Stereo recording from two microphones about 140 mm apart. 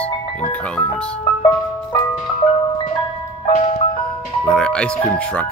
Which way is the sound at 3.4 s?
45° left (ahead or behind).